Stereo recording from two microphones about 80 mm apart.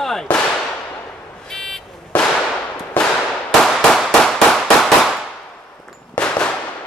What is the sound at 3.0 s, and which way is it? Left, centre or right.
Firecracker, centre.